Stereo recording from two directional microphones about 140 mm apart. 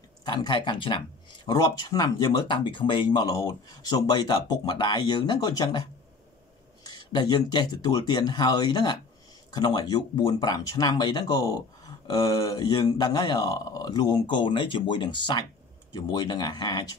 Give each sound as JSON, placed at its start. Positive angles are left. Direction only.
{"t": 0.2, "sound": "speech", "side_deg": 30}
{"t": 6.9, "sound": "speech", "side_deg": 30}